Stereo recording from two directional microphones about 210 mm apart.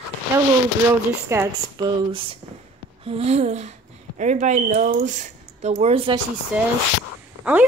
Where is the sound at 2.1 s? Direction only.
25° right (ahead or behind).